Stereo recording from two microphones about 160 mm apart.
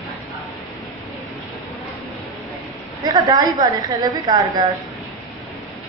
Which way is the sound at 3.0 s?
25° right (ahead or behind).